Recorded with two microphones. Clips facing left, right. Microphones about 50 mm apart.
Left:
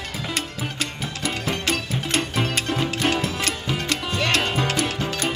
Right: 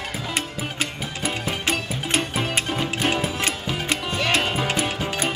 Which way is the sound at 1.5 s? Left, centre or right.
Centre.